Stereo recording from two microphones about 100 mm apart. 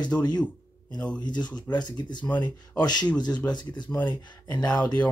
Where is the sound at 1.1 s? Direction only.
45° left (ahead or behind).